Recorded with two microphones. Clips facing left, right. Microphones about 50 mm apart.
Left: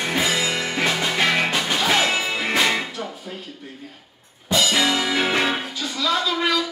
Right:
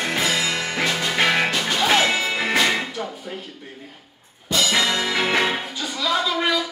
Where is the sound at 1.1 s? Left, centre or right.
Centre.